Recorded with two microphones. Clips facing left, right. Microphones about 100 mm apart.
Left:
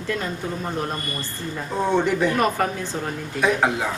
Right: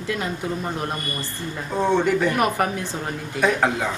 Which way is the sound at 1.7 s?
Centre (ahead or behind).